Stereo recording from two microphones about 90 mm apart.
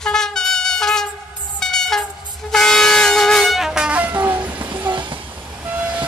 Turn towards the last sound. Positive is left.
turn(degrees=-15)  # may be behind; listen again after turning